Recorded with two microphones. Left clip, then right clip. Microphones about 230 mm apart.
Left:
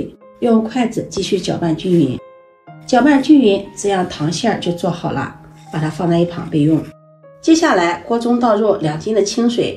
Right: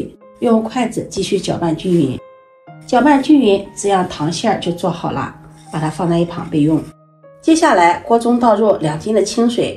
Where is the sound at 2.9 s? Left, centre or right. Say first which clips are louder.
Even; centre.